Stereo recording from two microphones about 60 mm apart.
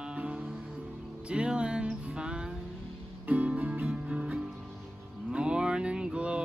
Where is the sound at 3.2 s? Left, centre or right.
Right.